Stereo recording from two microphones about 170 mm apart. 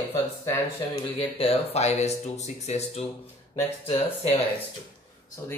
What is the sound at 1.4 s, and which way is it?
Speech, 40° left (ahead or behind).